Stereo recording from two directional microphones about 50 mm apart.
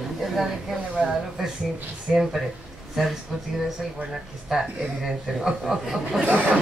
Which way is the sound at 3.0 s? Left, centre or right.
Centre.